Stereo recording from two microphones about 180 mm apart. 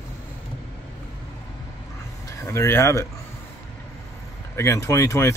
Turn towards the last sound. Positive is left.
turn(degrees=15)  # may be behind; listen again after turning